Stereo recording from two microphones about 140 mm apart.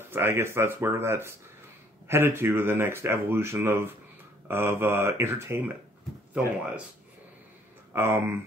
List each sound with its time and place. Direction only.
0.1 s speech: 15° right (ahead or behind)
7.9 s speech: 15° right (ahead or behind)